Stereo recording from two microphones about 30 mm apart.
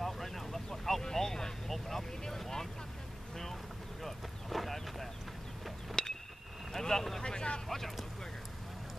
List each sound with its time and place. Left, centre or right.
0.0 s vehicle: centre
4.0 s a sound: centre
6.0 s a sound: left
6.8 s boat: centre
7.2 s vehicle: left
7.6 s vehicle: centre